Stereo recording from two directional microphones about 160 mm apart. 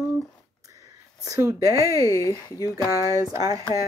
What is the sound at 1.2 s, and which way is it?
Speech, 20° right (ahead or behind).